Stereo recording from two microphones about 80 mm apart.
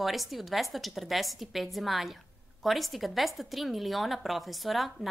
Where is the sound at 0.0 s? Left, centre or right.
Centre.